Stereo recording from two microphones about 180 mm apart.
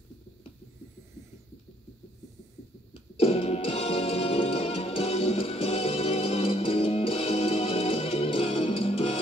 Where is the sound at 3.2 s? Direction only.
35° left (ahead or behind).